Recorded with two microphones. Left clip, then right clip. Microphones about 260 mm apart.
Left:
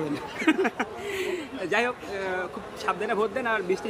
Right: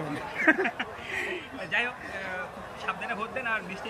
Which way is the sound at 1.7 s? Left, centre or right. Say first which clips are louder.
Left 3 dB; left.